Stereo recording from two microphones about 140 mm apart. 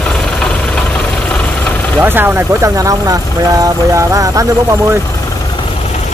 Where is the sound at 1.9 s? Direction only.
15° right (ahead or behind).